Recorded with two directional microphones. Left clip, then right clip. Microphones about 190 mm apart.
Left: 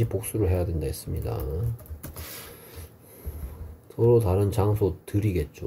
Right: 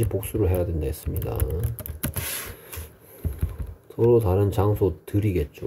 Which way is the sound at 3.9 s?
15° right (ahead or behind).